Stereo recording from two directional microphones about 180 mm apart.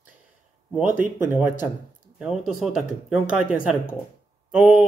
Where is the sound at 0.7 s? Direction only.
5° right (ahead or behind).